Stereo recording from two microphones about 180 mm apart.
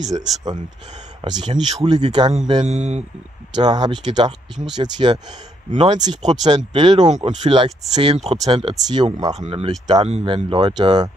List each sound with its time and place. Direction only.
0.1 s speech: 25° right (ahead or behind)
2.6 s speech: 40° right (ahead or behind)
3.5 s speech: 25° right (ahead or behind)
9.7 s speech: 20° right (ahead or behind)